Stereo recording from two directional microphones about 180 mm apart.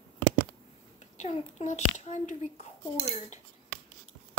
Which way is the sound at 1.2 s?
40° left (ahead or behind).